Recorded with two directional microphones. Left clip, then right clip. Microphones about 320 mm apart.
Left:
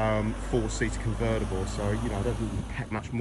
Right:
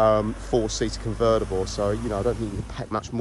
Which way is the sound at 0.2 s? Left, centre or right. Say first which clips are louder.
Right 6 dB; centre.